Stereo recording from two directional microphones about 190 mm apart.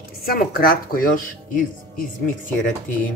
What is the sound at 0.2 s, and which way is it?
A woman's voice, 50° left (ahead or behind).